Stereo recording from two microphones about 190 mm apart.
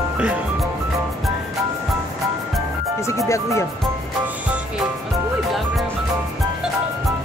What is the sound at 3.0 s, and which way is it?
Speech, 15° left (ahead or behind).